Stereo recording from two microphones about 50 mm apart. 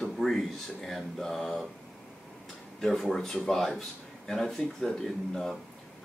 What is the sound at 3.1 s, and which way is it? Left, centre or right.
Speech, centre.